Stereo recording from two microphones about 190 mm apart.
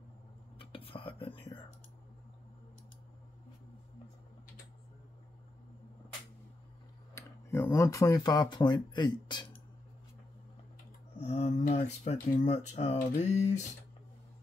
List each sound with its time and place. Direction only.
0.6 s whispering: 30° left (ahead or behind)
7.2 s speech: 15° left (ahead or behind)
11.1 s speech: 40° left (ahead or behind)